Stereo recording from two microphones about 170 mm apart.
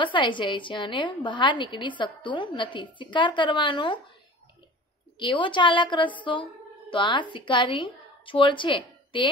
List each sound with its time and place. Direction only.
0.0 s a woman's voice: 30° left (ahead or behind)
5.2 s a woman's voice: 30° left (ahead or behind)